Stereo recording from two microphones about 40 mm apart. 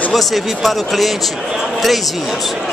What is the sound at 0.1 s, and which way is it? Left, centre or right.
A man's voice, centre.